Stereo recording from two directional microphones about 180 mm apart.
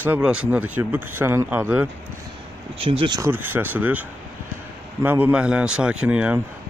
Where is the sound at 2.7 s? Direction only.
30° right (ahead or behind).